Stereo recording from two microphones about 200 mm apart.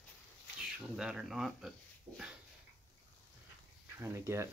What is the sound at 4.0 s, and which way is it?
Speech, 15° right (ahead or behind).